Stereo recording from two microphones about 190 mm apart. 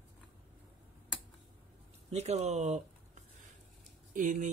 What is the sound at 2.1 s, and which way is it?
Speech, 35° right (ahead or behind).